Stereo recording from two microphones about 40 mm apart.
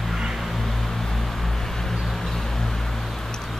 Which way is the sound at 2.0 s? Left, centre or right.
Centre.